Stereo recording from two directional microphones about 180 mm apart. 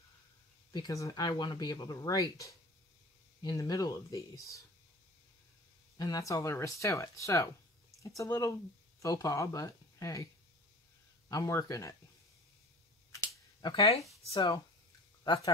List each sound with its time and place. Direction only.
0.7 s speech: 20° left (ahead or behind)
5.9 s speech: 20° left (ahead or behind)
11.2 s speech: 20° left (ahead or behind)
13.1 s a sound: 15° left (ahead or behind)
14.2 s speech: 30° left (ahead or behind)